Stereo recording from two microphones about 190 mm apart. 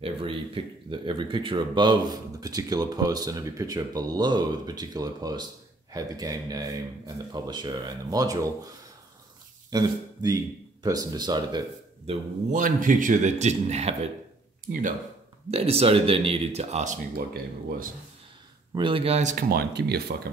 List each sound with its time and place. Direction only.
0.0 s speech: 30° right (ahead or behind)
12.1 s speech: 40° right (ahead or behind)
15.5 s speech: 30° right (ahead or behind); by 17.9 s 50° right (ahead or behind)
18.8 s speech: 25° right (ahead or behind)
19.5 s speech: 60° right (ahead or behind)